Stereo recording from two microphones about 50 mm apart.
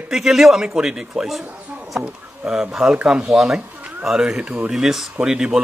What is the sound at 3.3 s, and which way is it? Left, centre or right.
A man's voice, centre.